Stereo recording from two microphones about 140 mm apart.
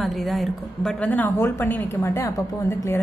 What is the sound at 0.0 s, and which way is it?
A woman's voice, centre (ahead or behind).